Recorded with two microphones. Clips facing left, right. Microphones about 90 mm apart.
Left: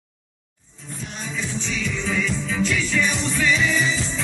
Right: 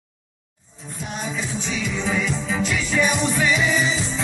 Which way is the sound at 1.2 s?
15° right (ahead or behind).